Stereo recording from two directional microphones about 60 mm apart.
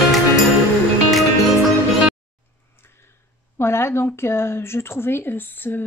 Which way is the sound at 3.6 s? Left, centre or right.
Left.